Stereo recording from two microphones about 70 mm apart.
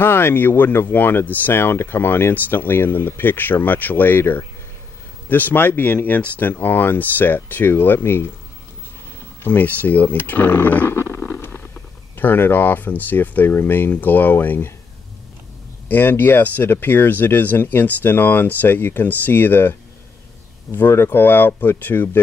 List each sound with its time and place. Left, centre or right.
0.0 s speech: left
9.4 s speech: left
11.1 s stomach rumble: centre
12.2 s speech: left
15.9 s speech: left
20.7 s speech: left